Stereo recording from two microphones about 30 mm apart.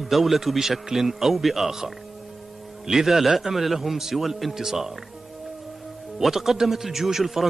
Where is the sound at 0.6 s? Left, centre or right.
Centre.